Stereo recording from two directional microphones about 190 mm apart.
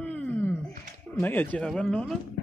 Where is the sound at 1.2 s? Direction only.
10° left (ahead or behind).